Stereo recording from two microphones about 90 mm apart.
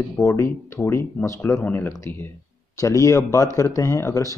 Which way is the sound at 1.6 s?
25° left (ahead or behind).